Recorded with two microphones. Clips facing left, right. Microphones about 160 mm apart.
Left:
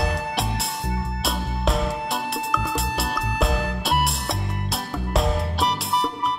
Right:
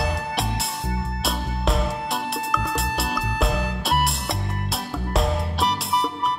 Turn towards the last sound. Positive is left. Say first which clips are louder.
# even
turn(degrees=0)  # may be behind; listen again after turning